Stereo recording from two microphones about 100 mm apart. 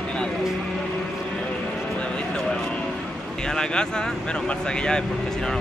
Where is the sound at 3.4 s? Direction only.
5° left (ahead or behind).